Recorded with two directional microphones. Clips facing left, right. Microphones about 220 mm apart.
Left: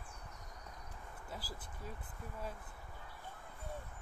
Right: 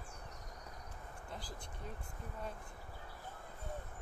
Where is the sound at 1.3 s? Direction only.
5° left (ahead or behind).